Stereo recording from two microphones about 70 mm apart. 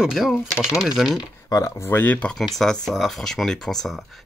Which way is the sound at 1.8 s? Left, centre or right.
Left.